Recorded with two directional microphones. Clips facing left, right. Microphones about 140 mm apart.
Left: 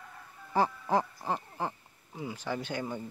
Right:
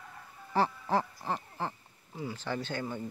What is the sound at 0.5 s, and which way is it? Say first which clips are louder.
Speech: left 1 dB; 15° left (ahead or behind).